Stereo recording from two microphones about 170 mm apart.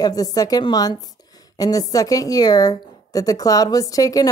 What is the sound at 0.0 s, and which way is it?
A woman's voice, 20° left (ahead or behind).